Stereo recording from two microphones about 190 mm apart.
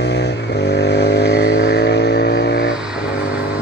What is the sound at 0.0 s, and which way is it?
Vehicle, 60° left (ahead or behind).